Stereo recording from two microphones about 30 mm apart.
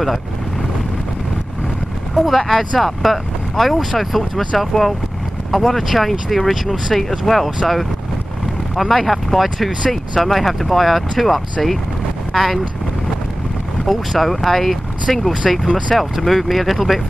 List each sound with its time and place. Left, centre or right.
2.1 s speech: centre
4.7 s speech: left
5.5 s speech: centre
13.8 s speech: centre